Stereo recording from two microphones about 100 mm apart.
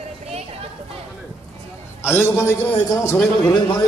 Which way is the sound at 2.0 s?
25° left (ahead or behind).